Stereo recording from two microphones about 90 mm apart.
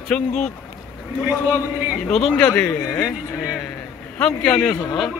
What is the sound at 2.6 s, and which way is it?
Speech, 30° left (ahead or behind).